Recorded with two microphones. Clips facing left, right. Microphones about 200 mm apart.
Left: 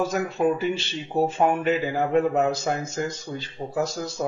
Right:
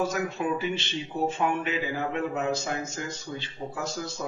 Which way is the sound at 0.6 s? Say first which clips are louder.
Left 3 dB; 35° left (ahead or behind).